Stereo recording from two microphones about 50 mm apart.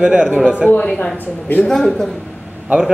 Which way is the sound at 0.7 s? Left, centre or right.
Left.